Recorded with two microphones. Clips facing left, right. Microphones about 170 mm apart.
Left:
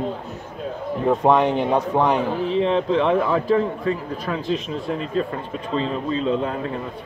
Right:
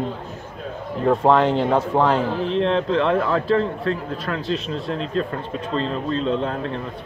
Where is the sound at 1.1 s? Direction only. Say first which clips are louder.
Right 1 dB; 20° left (ahead or behind).